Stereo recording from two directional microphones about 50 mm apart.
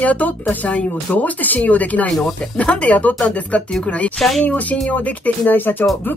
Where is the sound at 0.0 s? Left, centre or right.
Left.